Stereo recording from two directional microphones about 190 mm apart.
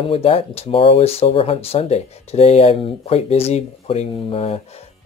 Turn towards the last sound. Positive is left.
turn(degrees=30)  # may be behind; listen again after turning